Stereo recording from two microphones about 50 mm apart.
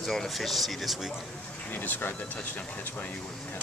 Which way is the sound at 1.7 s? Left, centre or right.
Left.